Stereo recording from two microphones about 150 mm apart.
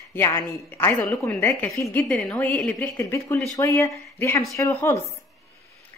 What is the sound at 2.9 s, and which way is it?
Speech, 20° left (ahead or behind).